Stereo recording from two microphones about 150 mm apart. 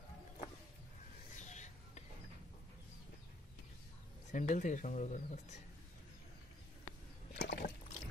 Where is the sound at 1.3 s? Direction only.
50° left (ahead or behind).